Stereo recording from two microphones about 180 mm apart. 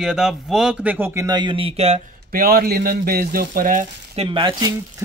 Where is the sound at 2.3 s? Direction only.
55° right (ahead or behind).